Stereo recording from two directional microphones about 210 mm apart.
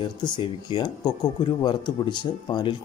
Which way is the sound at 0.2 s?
20° left (ahead or behind).